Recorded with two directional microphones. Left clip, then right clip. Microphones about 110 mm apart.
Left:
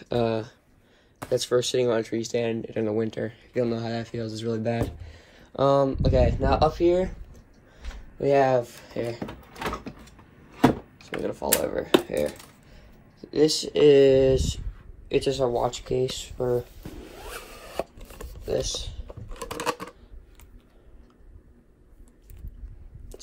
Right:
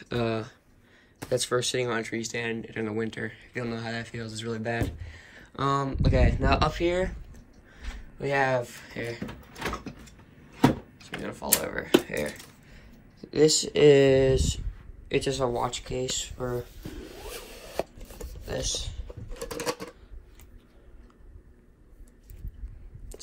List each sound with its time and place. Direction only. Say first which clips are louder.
0.0 s speech: left 4 dB; 40° left (ahead or behind)
1.9 s speech: left 5 dB; 50° left (ahead or behind); by 5.5 s 70° left (ahead or behind)
5.5 s speech: left 7 dB; 40° left (ahead or behind)
7.7 s speech: left 2 dB; 65° left (ahead or behind)
11.0 s speech: left 6 dB; 70° left (ahead or behind)
12.1 s speech: left 5 dB; 55° left (ahead or behind)
12.6 s speech: even; 25° left (ahead or behind)
15.6 s speech: left 5 dB; 75° left (ahead or behind)
16.4 s a sound: left 7 dB; 55° left (ahead or behind)
17.2 s a sound: left 3 dB; 30° left (ahead or behind)
18.4 s typing: left 4 dB; 60° left (ahead or behind)